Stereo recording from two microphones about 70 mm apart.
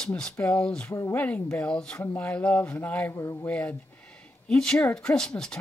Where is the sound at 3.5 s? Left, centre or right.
Centre.